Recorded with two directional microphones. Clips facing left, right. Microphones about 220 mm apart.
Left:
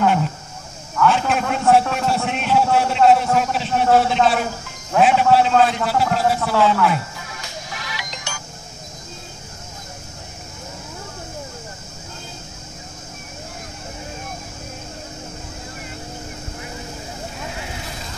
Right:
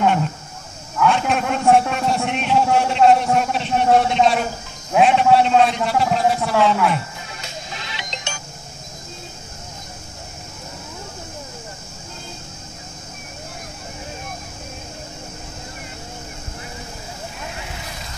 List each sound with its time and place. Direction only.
1.0 s a man's voice: centre (ahead or behind)
7.4 s music: 25° right (ahead or behind)